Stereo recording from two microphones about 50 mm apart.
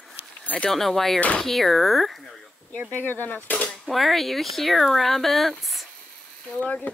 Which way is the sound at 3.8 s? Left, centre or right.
Centre.